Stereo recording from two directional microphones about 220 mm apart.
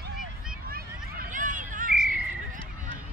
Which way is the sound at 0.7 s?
40° right (ahead or behind).